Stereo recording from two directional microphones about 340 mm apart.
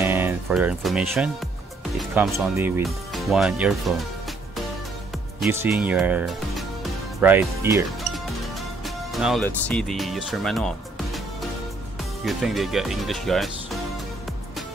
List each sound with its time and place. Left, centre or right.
0.0 s speech: centre
5.4 s speech: centre